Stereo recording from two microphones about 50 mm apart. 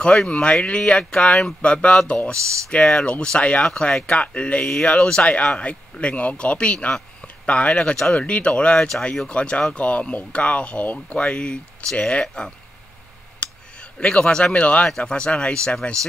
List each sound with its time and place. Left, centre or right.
0.0 s speech: centre
0.3 s speech: left
4.0 s speech: left
8.7 s speech: centre; by 11.1 s left
11.1 s speech: centre
13.4 s a sound: left
14.9 s speech: centre